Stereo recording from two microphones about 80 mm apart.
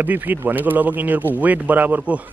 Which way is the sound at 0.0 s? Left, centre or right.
Right.